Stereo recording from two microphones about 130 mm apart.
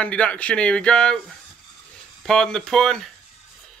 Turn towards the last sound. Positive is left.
turn(degrees=5)  # may be behind; listen again after turning